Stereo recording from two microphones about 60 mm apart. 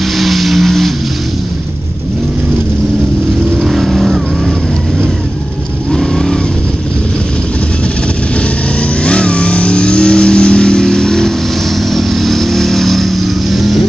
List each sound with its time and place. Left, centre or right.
0.2 s vehicle: centre
3.6 s vehicle: centre
5.9 s vehicle: centre
9.0 s vehicle: centre